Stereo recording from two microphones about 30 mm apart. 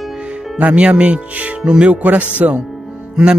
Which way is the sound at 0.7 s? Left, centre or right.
Right.